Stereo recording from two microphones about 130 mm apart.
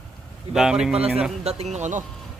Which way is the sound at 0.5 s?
5° right (ahead or behind).